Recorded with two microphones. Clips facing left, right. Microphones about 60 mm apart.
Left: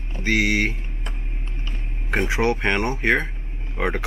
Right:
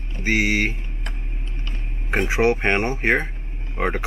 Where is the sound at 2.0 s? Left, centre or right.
Right.